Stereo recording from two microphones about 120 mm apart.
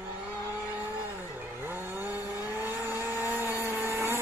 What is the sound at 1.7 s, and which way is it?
Vehicle, 15° right (ahead or behind).